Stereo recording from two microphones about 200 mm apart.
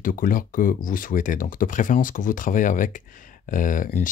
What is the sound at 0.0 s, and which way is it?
Speech, 45° left (ahead or behind).